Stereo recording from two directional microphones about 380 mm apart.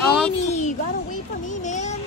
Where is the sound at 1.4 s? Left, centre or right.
Centre.